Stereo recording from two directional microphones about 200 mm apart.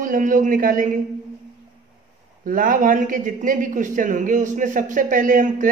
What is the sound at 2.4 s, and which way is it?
Speech, 45° right (ahead or behind).